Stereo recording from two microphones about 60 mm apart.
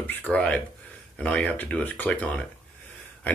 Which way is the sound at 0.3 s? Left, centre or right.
Centre.